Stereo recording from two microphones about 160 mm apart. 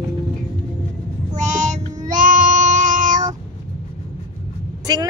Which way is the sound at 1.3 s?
50° right (ahead or behind).